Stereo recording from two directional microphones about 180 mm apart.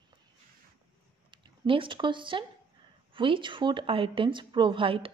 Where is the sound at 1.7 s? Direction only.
30° right (ahead or behind).